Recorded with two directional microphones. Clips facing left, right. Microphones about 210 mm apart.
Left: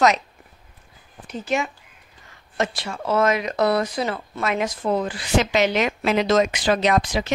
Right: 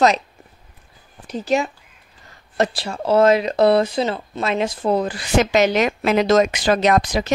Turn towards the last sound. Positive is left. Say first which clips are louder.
# right 3 dB
turn(degrees=-40)  # may be behind; listen again after turning